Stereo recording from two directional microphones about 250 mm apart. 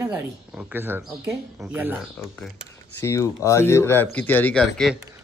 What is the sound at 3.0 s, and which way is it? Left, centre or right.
Speech, centre.